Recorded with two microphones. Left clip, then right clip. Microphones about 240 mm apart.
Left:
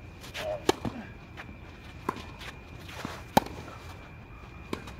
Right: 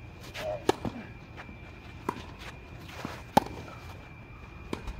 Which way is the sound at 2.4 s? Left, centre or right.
Centre.